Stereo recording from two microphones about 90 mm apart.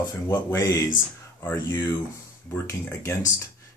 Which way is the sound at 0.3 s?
30° left (ahead or behind).